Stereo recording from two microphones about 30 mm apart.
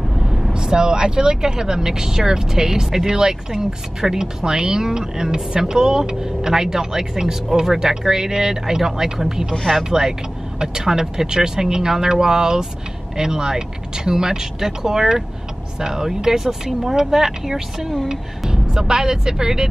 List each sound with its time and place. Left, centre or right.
0.2 s vehicle: centre
0.5 s speech: right